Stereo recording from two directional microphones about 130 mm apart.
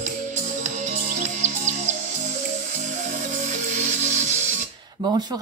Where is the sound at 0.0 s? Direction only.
70° right (ahead or behind).